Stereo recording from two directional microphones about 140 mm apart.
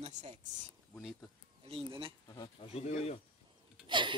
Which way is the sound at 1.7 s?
40° right (ahead or behind).